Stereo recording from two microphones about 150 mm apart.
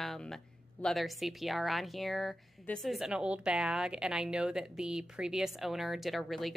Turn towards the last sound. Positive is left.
turn(degrees=0)  # may be behind; listen again after turning